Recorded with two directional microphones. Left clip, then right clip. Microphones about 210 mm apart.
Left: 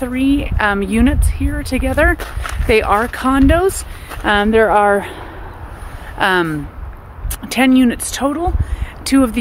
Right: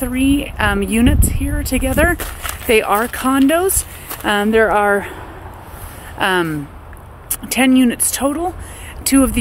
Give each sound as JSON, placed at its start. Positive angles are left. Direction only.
{"t": 0.0, "sound": "speech", "side_deg": 0}
{"t": 6.1, "sound": "speech", "side_deg": 10}